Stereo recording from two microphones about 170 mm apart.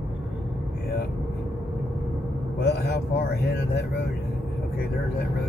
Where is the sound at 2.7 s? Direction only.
80° left.